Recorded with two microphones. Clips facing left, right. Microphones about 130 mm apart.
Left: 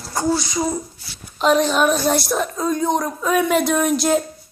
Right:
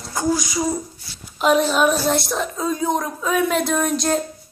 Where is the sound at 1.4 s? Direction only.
5° right (ahead or behind).